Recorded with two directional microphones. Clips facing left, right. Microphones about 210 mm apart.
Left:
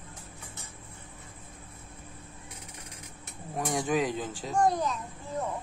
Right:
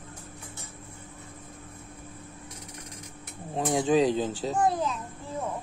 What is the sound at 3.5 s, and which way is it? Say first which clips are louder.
Speech: right 5 dB; 25° right (ahead or behind).